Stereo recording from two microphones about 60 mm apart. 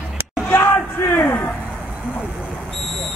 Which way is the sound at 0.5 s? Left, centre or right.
Left.